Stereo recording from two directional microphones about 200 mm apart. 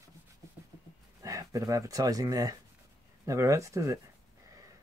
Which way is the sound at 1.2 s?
15° right (ahead or behind).